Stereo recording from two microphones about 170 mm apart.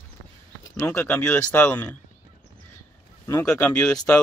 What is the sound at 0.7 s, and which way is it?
Speech, 10° left (ahead or behind).